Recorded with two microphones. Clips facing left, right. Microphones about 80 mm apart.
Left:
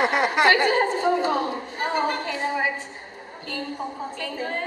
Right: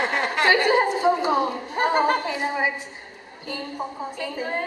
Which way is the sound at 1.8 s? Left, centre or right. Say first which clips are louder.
Right 5 dB; right.